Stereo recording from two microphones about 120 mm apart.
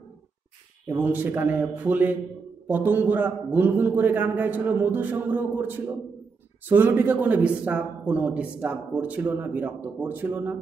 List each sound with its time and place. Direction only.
0.8 s a man's voice: 15° right (ahead or behind)